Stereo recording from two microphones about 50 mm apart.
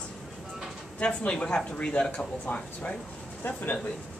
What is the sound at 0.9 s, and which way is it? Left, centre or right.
Speech, centre.